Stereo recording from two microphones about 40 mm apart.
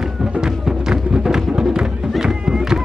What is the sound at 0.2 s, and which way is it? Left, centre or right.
Music, centre.